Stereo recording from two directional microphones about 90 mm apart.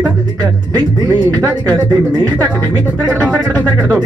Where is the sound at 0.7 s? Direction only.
50° right (ahead or behind).